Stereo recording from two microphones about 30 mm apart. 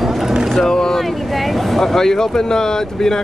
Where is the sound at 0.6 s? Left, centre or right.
Left.